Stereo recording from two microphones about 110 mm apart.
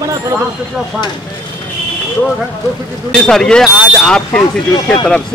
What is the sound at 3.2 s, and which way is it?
Speech, 5° left (ahead or behind).